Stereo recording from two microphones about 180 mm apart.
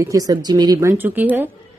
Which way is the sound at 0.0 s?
20° right (ahead or behind).